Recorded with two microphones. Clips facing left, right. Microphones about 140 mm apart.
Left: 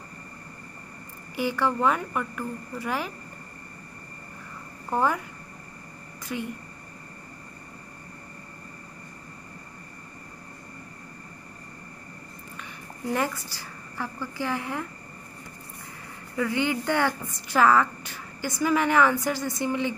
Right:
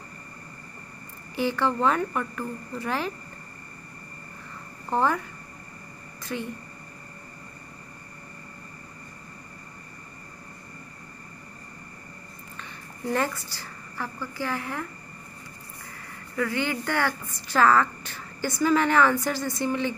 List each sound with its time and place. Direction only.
1.3 s a woman's voice: 10° left (ahead or behind)
4.8 s speech: 10° left (ahead or behind)
6.3 s a woman's voice: 15° left (ahead or behind)
13.9 s a woman's voice: 15° left (ahead or behind)
16.3 s a woman's voice: 20° left (ahead or behind)